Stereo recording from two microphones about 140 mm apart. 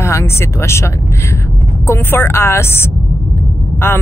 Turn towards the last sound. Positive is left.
turn(degrees=15)  # may be behind; listen again after turning